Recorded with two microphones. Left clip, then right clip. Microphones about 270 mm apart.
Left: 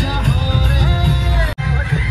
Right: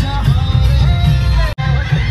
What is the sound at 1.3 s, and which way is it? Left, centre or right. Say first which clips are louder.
Music: even; right.